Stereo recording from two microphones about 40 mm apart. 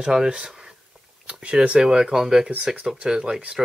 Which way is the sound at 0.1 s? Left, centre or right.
Right.